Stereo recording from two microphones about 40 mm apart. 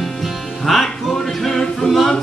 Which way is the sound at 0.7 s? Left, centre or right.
Centre.